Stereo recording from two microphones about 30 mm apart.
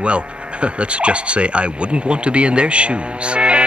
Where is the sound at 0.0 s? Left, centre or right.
Right.